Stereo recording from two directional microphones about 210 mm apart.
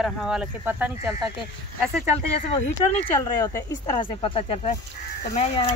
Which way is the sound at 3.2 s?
15° left (ahead or behind).